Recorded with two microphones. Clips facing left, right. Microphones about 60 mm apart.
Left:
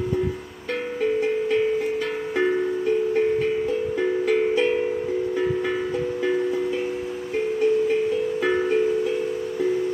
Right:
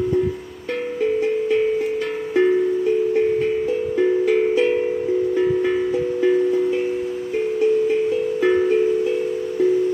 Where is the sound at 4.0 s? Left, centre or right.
Centre.